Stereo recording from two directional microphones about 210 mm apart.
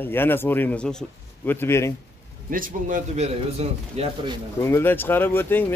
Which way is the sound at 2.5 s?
40° right (ahead or behind).